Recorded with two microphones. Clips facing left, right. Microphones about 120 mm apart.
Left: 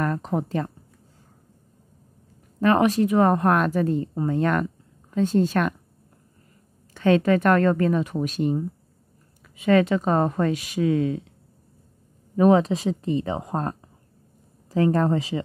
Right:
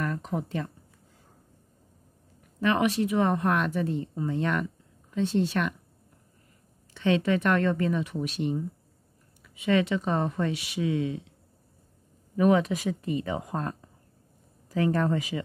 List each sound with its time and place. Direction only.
0.0 s speech: 40° left (ahead or behind)
2.6 s a woman's voice: 40° left (ahead or behind)
6.9 s a woman's voice: 45° left (ahead or behind)
12.4 s speech: 35° left (ahead or behind)